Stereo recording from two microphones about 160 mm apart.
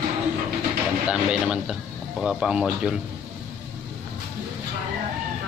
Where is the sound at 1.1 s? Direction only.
5° right (ahead or behind).